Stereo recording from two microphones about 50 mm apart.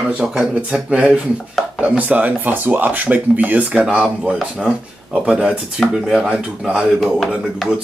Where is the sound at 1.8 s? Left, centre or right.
Right.